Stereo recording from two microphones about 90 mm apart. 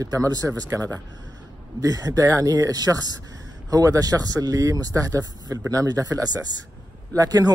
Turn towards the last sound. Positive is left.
turn(degrees=-45)  # may be behind; listen again after turning